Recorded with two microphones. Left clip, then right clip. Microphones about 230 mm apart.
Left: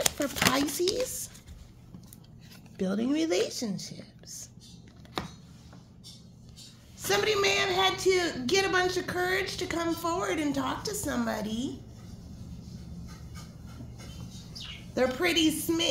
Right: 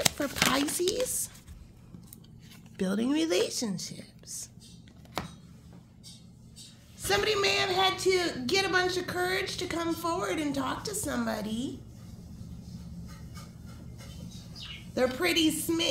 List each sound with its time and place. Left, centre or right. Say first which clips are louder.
0.2 s a man's voice: left 1 dB; centre
2.8 s speech: even; centre
7.0 s a man's voice: left 1 dB; centre
15.0 s a man's voice: left 1 dB; centre